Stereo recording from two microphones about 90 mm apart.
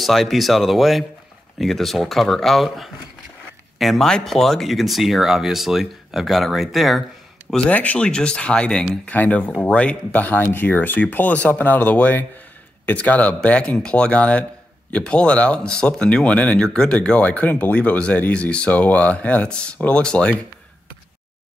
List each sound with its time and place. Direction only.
0.0 s speech: centre (ahead or behind)
7.5 s speech: 15° left (ahead or behind)